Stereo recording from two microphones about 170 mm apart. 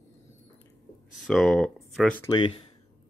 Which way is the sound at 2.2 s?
30° left (ahead or behind).